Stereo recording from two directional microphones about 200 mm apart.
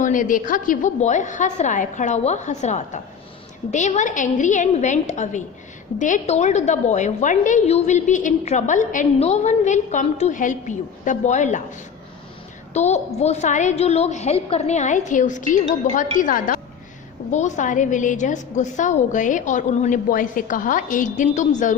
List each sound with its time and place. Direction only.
0.0 s a woman's voice: 40° left (ahead or behind)
12.7 s a woman's voice: 35° left (ahead or behind)